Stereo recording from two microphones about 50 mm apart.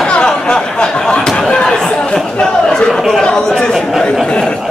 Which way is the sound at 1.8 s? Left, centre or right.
Centre.